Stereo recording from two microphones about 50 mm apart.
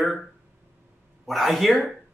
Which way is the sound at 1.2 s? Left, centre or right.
Centre.